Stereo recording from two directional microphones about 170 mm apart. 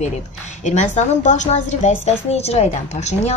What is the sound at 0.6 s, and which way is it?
A woman's voice, 45° left (ahead or behind).